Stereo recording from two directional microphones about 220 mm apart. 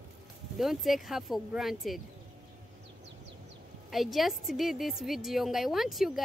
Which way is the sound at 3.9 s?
Centre (ahead or behind).